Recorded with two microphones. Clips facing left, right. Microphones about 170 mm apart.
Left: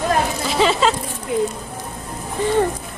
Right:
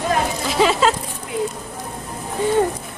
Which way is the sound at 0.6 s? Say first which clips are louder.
Even; 5° right (ahead or behind).